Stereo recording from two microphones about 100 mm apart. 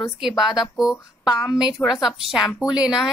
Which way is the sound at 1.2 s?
30° left (ahead or behind).